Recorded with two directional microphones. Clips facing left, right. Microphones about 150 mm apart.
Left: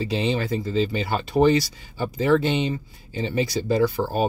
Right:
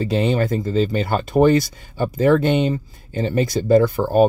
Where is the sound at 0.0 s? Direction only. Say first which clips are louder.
Right 5 dB; 50° right (ahead or behind).